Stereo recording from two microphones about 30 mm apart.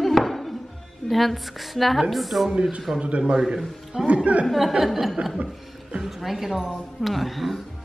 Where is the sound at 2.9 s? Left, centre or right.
Right.